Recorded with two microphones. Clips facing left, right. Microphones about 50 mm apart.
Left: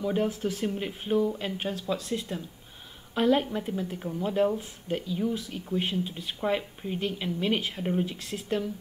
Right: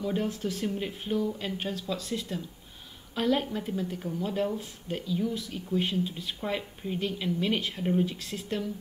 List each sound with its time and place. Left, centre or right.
0.4 s speech: left
1.1 s speech: left